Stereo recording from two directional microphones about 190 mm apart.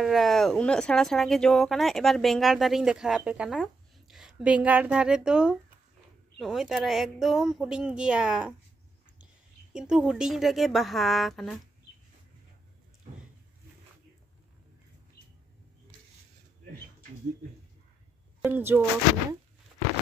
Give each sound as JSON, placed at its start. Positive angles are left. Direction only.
{"t": 0.0, "sound": "speech", "side_deg": 0}
{"t": 15.2, "sound": "a sound", "side_deg": 55}
{"t": 18.4, "sound": "speech", "side_deg": -10}